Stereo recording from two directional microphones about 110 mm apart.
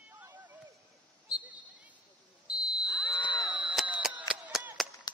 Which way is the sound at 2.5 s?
10° right (ahead or behind).